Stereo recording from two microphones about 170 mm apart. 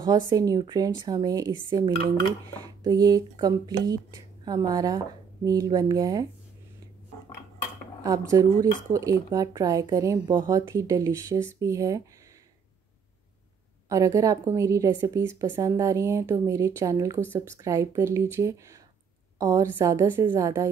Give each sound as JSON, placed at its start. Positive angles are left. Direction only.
{"t": 0.3, "sound": "speech", "side_deg": -20}
{"t": 8.0, "sound": "speech", "side_deg": -20}
{"t": 13.8, "sound": "speech", "side_deg": -20}